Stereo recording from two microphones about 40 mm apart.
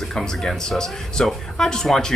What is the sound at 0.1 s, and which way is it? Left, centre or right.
Speech, centre.